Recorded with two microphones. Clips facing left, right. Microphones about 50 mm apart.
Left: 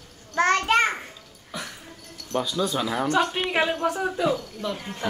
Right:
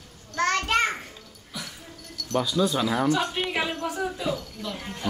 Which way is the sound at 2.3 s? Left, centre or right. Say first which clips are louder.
Right 1 dB; centre.